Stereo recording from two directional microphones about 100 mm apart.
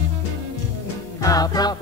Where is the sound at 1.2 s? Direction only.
40° left (ahead or behind).